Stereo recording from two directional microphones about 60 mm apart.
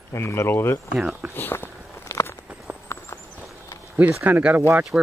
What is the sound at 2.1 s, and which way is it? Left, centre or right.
Walk, left.